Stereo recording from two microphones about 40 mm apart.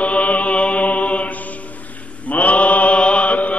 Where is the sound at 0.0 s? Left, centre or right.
Left.